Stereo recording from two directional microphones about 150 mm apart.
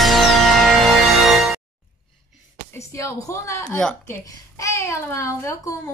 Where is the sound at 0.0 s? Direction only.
Centre (ahead or behind).